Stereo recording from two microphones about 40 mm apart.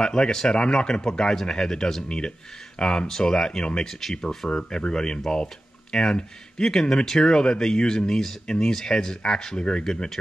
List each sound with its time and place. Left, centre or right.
0.0 s speech: centre
3.1 s speech: centre
4.5 s speech: left